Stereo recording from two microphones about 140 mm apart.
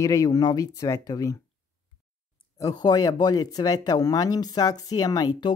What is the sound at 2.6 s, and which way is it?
Speech, 30° left (ahead or behind).